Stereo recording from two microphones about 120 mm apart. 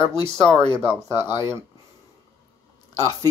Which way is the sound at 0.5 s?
40° left (ahead or behind).